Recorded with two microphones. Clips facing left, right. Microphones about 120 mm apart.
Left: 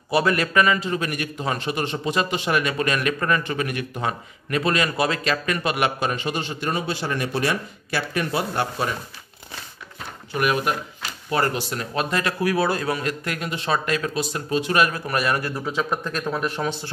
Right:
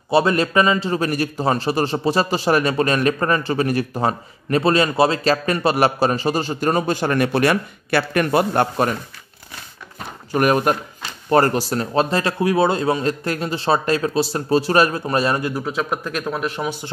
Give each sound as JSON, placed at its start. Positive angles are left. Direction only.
{"t": 0.1, "sound": "a man's voice", "side_deg": -25}
{"t": 10.3, "sound": "a man's voice", "side_deg": -45}
{"t": 15.5, "sound": "speech", "side_deg": -5}